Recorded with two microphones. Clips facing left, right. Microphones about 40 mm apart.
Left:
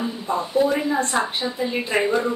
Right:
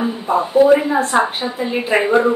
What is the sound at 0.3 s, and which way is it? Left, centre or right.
Speech, centre.